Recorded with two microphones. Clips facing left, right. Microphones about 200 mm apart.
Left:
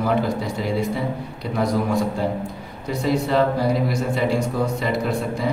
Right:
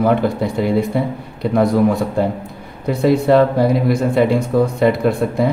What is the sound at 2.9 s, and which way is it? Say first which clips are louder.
A man's voice: right 8 dB; 55° right (ahead or behind).